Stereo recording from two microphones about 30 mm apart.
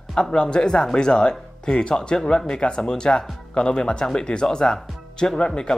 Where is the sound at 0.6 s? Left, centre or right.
Left.